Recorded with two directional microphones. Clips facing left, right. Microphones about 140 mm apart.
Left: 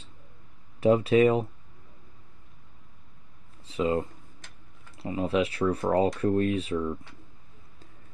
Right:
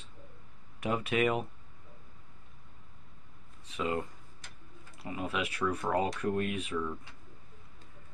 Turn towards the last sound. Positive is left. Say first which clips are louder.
# left 7 dB
turn(degrees=30)  # may be behind; listen again after turning